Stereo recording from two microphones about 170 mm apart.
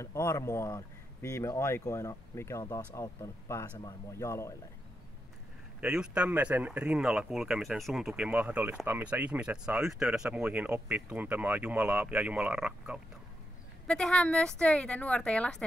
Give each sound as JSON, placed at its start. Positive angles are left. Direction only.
{"t": 0.0, "sound": "speech", "side_deg": 15}
{"t": 5.8, "sound": "speech", "side_deg": -5}
{"t": 13.8, "sound": "a woman's voice", "side_deg": 5}